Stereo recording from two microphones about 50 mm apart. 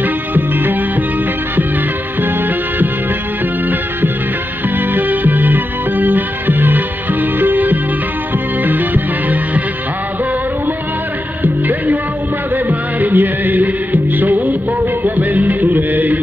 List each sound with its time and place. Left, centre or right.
0.0 s music: right
4.7 s music: right
11.4 s music: right